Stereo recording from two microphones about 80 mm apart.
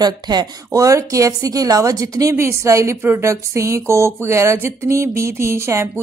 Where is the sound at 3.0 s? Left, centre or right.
Right.